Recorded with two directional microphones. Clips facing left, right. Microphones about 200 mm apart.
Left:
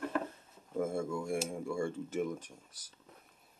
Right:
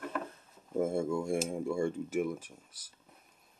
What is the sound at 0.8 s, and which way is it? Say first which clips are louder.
Speech: right 4 dB; 25° right (ahead or behind).